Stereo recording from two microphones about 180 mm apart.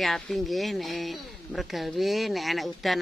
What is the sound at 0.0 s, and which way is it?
Speech, centre (ahead or behind).